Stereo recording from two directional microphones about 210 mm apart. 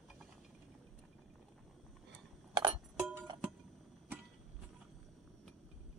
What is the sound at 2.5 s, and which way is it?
Music, 20° right (ahead or behind).